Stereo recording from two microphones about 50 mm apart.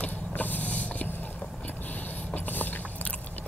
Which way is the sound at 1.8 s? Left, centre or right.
Left.